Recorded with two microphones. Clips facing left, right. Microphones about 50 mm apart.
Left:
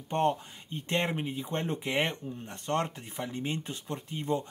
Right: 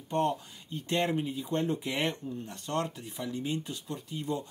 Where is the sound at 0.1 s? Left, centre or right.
Left.